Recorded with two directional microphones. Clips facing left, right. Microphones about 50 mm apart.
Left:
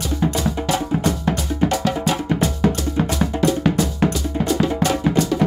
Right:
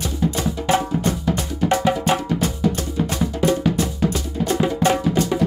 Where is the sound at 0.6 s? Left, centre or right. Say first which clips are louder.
Right 4 dB; right.